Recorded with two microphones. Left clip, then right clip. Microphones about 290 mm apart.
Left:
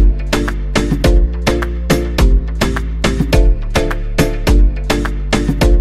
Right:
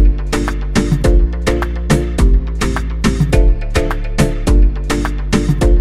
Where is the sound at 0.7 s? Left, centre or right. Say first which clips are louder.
Left 1 dB; centre.